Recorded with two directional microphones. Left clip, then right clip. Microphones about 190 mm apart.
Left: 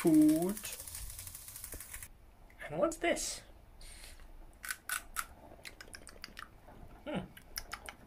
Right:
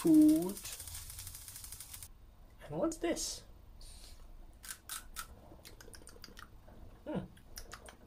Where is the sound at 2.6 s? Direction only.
5° right (ahead or behind).